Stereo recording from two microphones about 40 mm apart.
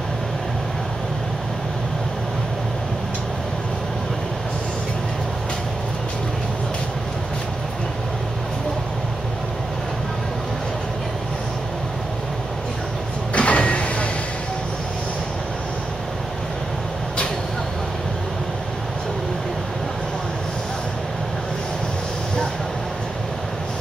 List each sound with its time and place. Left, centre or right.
13.3 s sliding door: left